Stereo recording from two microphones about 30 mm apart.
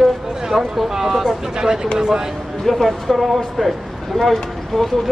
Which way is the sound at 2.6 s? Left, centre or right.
Centre.